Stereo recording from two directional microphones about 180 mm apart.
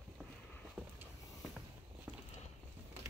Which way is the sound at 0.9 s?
Centre (ahead or behind).